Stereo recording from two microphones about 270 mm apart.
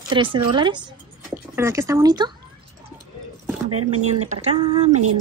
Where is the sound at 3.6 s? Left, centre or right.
Right.